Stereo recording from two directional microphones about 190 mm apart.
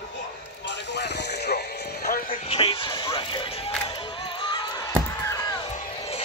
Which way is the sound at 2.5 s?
30° left (ahead or behind).